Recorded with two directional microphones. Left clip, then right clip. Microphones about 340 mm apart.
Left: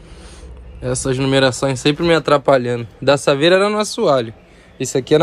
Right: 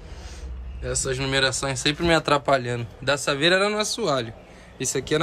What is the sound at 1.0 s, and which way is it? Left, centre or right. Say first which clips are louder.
Speech: left 8 dB; centre.